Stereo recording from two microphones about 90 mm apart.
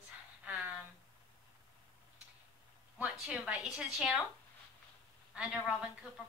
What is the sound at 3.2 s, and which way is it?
A woman's voice, 5° right (ahead or behind).